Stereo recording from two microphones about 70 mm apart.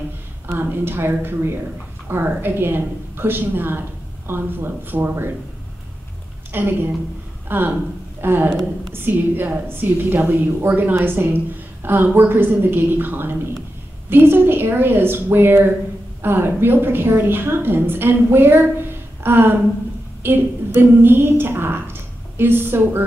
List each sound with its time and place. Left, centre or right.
0.5 s a woman's voice: right
6.5 s a woman's voice: right